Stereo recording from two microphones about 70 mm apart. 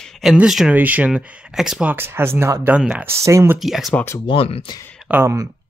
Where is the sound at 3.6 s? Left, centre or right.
Centre.